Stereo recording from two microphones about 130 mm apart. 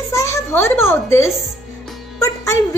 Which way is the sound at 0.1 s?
20° left (ahead or behind).